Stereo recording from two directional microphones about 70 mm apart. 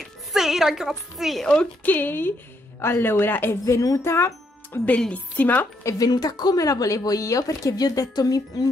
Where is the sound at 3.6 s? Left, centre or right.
Left.